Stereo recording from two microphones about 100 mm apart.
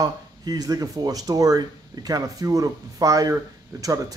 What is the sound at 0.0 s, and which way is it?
Speech, 40° right (ahead or behind).